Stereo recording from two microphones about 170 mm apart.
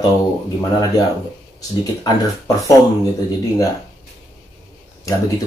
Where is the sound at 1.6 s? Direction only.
20° left (ahead or behind).